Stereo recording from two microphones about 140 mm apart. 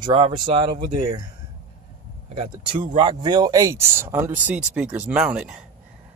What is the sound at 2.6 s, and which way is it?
Speech, 35° right (ahead or behind).